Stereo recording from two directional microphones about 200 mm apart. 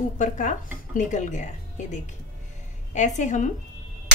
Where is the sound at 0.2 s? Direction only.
40° left (ahead or behind).